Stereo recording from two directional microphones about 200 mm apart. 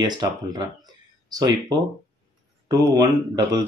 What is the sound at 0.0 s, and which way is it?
Speech, 20° right (ahead or behind).